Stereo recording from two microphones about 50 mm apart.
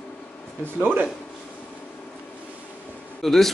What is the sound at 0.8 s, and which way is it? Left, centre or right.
Speech, right.